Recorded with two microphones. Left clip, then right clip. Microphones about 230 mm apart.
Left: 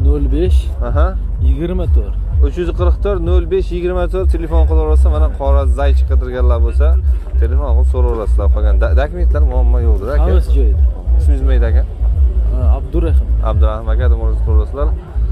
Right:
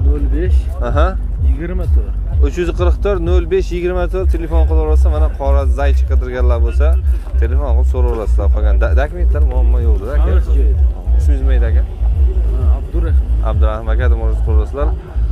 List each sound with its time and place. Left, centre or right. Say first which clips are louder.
0.3 s music: left 5 dB; left
0.8 s speech: right 3 dB; centre
1.6 s speech: left 5 dB; left
2.4 s speech: right 1 dB; centre
11.4 s speech: left 3 dB; centre
13.4 s speech: left 1 dB; centre
13.7 s speech: right 1 dB; centre